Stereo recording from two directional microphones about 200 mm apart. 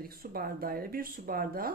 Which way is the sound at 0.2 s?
50° right (ahead or behind).